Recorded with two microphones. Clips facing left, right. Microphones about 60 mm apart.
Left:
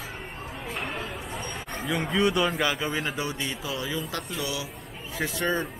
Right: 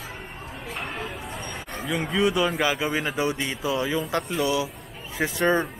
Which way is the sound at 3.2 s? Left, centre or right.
Right.